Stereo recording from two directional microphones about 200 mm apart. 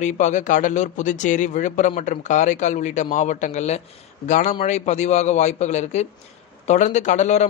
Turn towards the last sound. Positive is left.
turn(degrees=35)  # may be behind; listen again after turning